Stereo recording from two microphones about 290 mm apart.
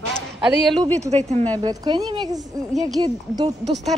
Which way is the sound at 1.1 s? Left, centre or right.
Right.